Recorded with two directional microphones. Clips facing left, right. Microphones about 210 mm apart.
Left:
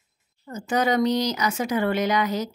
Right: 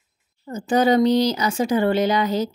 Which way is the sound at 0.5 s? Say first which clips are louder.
Right 5 dB; 30° right (ahead or behind).